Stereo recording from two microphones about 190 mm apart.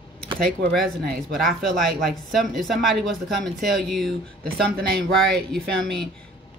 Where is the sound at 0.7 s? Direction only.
Centre (ahead or behind).